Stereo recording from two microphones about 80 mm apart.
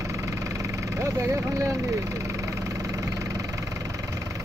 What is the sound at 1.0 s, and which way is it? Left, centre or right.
Speech, right.